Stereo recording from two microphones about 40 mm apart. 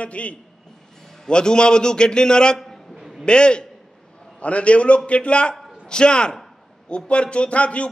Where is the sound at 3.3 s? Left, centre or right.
Left.